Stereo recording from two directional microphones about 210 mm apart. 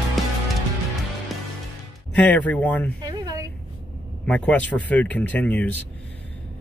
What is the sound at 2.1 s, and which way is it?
Speech, 5° left (ahead or behind).